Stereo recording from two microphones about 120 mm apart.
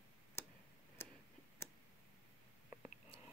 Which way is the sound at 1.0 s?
20° left (ahead or behind).